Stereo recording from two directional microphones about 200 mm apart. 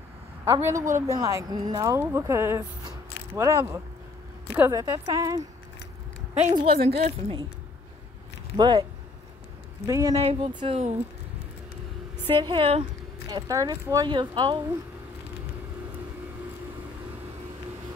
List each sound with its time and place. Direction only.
0.6 s speech: 15° right (ahead or behind)
6.5 s speech: 25° right (ahead or behind)
8.5 s speech: 20° right (ahead or behind)
9.8 s speech: 15° right (ahead or behind)
12.3 s speech: 25° right (ahead or behind)